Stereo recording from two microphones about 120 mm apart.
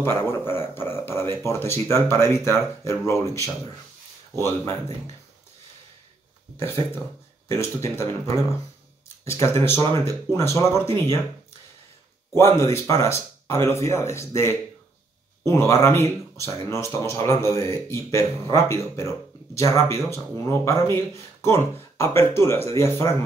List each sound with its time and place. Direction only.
0.7 s speech: 20° left (ahead or behind)
4.4 s speech: 25° left (ahead or behind)
6.5 s speech: 20° left (ahead or behind)
9.2 s speech: 20° left (ahead or behind)
12.4 s speech: 25° left (ahead or behind)